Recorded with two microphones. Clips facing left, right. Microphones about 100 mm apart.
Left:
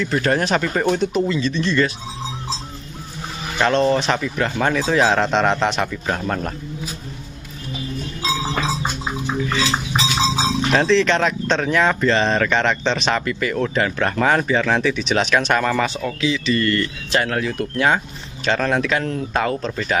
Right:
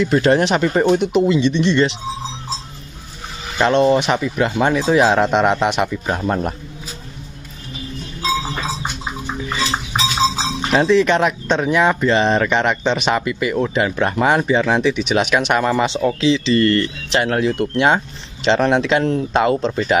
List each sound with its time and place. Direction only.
0.0 s speech: 20° right (ahead or behind)
3.5 s speech: 20° right (ahead or behind)
10.7 s speech: 15° right (ahead or behind)